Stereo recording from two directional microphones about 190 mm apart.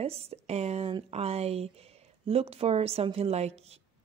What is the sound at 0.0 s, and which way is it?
A woman's voice, 30° right (ahead or behind).